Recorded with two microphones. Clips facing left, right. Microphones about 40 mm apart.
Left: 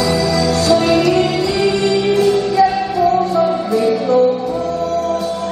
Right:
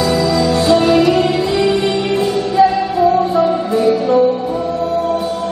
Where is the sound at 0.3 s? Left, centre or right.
Right.